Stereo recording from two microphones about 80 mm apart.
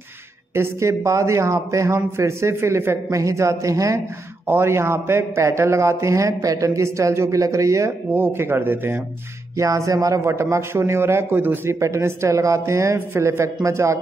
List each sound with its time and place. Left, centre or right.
0.6 s speech: right
4.5 s speech: right
8.1 s speech: right
9.6 s speech: right
11.8 s speech: right